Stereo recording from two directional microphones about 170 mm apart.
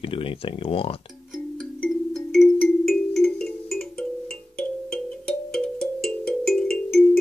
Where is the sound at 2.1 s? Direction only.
Centre (ahead or behind).